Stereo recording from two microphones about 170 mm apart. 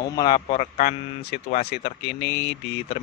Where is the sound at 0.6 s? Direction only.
35° left (ahead or behind).